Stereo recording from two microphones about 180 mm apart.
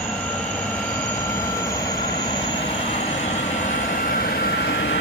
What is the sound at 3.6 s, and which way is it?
Vehicle, 50° left (ahead or behind).